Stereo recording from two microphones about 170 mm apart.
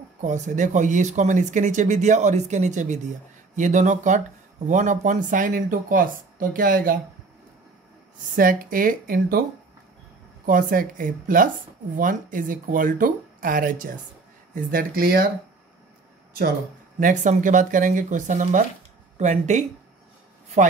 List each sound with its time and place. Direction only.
0.2 s speech: 45° right (ahead or behind)
8.4 s speech: 55° right (ahead or behind)
10.4 s speech: 50° right (ahead or behind)
17.0 s speech: 45° right (ahead or behind)